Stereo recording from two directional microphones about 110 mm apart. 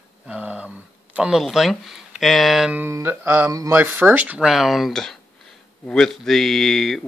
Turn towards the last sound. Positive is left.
turn(degrees=0)  # may be behind; listen again after turning